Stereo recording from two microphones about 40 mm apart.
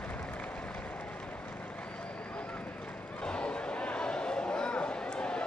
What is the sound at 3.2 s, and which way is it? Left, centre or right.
Chatter, left.